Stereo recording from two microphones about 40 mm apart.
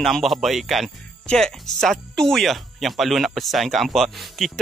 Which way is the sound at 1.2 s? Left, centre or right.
Centre.